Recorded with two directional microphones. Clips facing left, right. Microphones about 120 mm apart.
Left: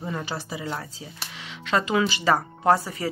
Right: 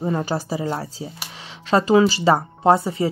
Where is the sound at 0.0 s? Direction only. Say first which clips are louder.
Right 8 dB; 40° right (ahead or behind).